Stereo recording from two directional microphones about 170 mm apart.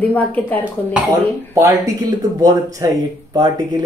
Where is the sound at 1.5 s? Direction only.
15° right (ahead or behind).